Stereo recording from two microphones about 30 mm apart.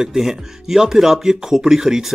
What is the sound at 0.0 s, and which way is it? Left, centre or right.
Speech, centre.